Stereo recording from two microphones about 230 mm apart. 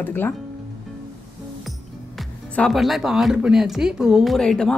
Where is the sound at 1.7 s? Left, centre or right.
Centre.